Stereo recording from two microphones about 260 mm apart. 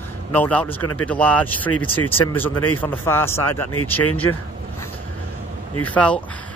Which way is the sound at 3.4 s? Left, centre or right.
Left.